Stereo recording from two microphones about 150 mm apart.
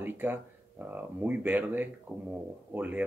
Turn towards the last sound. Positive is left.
turn(degrees=-10)  # may be behind; listen again after turning